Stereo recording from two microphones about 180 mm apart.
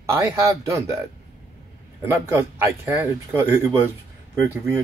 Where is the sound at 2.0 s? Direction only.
15° right (ahead or behind).